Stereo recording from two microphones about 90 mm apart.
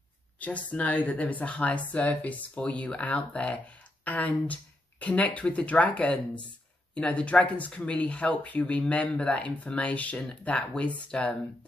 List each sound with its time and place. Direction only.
0.4 s speech: 15° left (ahead or behind)